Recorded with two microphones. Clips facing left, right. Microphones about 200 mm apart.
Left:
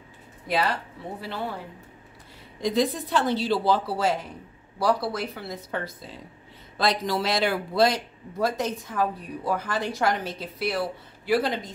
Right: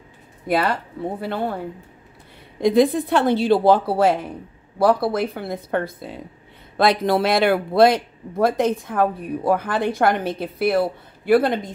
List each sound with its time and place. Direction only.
0.5 s speech: 55° right (ahead or behind)
2.6 s speech: 55° right (ahead or behind)